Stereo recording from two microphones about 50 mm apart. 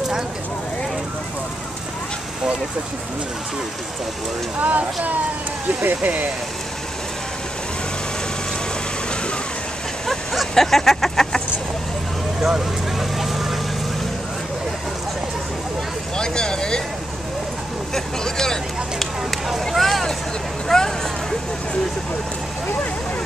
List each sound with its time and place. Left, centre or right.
4.6 s speech: right
10.0 s vehicle: centre
12.4 s vehicle: centre
16.2 s speech: centre
17.9 s speech: centre
19.7 s vehicle: centre
20.6 s speech: centre